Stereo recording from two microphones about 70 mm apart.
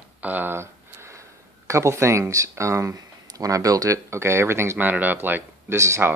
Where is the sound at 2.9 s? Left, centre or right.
Right.